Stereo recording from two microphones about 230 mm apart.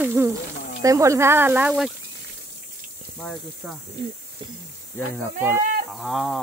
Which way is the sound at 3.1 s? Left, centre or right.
Centre.